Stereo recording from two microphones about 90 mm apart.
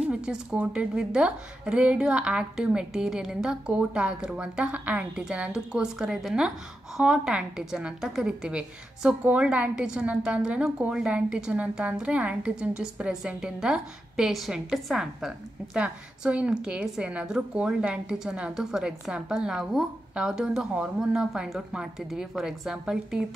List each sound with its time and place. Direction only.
0.0 s a woman's voice: 10° right (ahead or behind)